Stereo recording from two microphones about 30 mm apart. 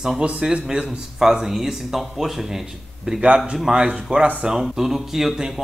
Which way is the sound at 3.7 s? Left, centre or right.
Right.